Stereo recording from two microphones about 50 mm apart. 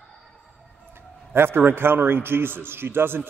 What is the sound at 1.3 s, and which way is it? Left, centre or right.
A man's voice, right.